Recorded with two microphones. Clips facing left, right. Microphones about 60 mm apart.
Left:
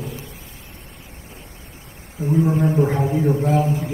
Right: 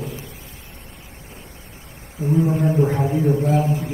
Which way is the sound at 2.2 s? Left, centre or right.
Left.